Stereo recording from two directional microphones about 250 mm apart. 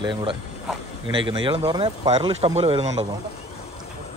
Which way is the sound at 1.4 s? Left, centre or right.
Centre.